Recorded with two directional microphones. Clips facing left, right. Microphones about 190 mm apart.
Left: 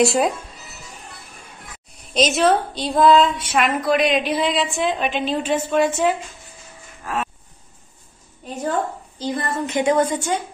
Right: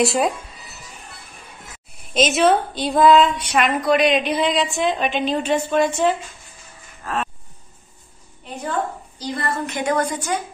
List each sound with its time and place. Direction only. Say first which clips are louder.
0.0 s speech: left 1 dB; centre (ahead or behind)
2.1 s a woman's voice: right 1 dB; centre (ahead or behind)
7.0 s cattle: even; 15° left (ahead or behind)
9.2 s a woman's voice: left 1 dB; 20° left (ahead or behind)